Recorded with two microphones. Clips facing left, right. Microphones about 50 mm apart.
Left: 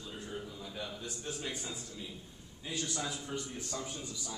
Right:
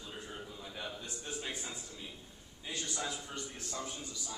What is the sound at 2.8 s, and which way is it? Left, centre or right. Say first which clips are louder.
Speech: left 1 dB; centre.